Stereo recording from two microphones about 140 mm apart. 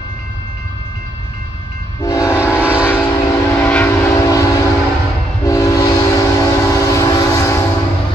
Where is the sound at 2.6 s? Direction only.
10° right (ahead or behind).